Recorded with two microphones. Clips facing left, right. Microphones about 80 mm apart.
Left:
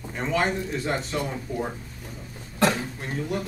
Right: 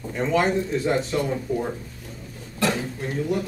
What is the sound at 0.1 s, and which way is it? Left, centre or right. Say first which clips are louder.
Speech: right 4 dB; centre.